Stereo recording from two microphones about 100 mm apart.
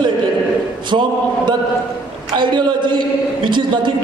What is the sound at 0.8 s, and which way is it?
A man's voice, 50° right (ahead or behind).